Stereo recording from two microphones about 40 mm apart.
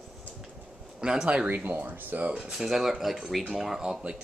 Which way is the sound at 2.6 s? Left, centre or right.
Centre.